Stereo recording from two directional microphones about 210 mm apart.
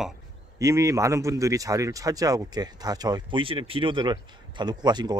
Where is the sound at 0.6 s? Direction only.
15° right (ahead or behind).